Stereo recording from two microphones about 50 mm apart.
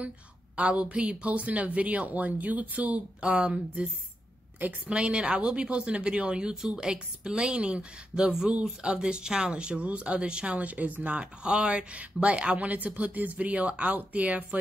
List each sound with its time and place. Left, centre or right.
0.6 s speech: right